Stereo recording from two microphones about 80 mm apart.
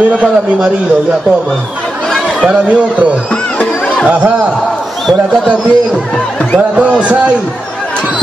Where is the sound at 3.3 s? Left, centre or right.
Centre.